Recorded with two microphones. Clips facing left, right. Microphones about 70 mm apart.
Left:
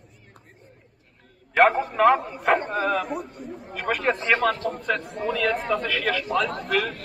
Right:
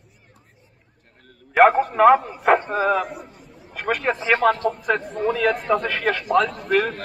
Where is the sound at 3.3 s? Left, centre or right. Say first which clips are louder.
Left 8 dB; left.